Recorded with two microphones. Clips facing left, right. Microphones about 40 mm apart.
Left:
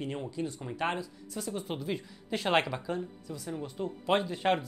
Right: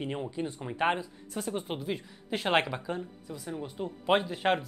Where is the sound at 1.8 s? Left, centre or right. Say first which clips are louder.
Even; centre.